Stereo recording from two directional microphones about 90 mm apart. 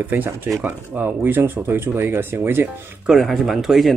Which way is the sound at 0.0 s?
20° right (ahead or behind).